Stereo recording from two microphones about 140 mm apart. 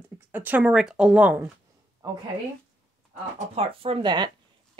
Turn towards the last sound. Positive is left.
turn(degrees=-30)  # may be behind; listen again after turning